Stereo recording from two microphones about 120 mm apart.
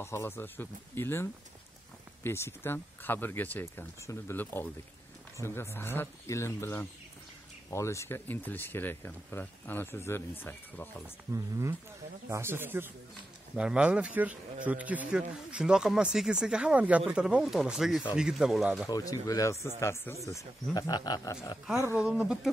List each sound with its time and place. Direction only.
0.0 s speech: 20° left (ahead or behind)
11.3 s speech: 25° right (ahead or behind); by 18.7 s 5° right (ahead or behind)
18.9 s speech: 30° left (ahead or behind)
22.0 s speech: 5° right (ahead or behind)